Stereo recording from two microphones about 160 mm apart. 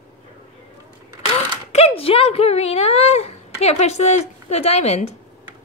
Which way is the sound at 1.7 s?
40° left (ahead or behind).